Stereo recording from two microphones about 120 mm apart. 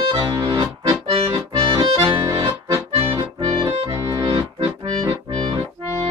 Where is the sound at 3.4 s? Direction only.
35° right (ahead or behind).